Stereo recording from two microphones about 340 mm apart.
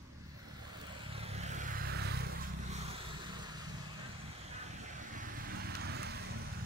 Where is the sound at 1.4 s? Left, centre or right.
Right.